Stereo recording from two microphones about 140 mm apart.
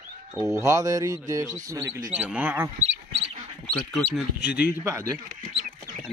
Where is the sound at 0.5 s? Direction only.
25° right (ahead or behind).